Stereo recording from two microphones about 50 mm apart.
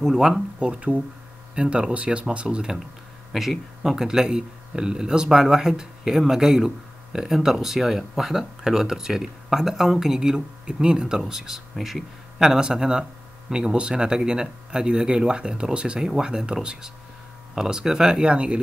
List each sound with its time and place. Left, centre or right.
0.0 s speech: centre
0.6 s speech: right
3.3 s speech: centre
12.4 s speech: centre
17.6 s speech: centre